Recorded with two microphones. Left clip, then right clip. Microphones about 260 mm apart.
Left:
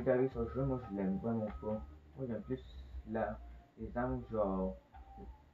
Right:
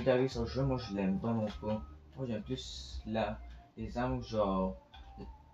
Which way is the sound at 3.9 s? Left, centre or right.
Right.